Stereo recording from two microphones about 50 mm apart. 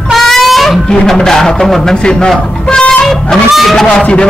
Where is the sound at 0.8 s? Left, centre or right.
Centre.